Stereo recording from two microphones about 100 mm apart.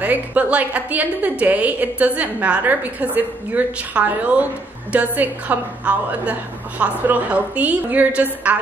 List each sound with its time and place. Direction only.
0.0 s a woman's voice: 15° right (ahead or behind)